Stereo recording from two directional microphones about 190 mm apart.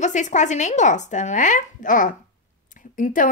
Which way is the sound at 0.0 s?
40° left (ahead or behind).